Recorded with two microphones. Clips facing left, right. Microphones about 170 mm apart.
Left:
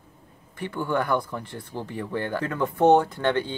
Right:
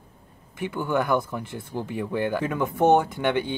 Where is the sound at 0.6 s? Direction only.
10° right (ahead or behind).